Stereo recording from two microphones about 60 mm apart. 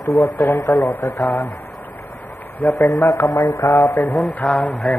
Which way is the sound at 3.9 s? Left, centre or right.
Left.